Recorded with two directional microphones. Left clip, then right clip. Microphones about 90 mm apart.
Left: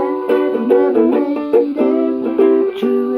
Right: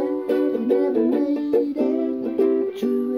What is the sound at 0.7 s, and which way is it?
Music, 35° right (ahead or behind).